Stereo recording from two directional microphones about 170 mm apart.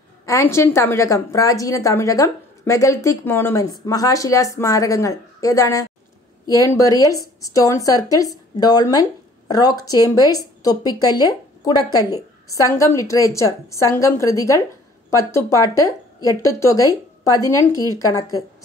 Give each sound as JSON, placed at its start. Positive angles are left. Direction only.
{"t": 0.2, "sound": "a woman's voice", "side_deg": 15}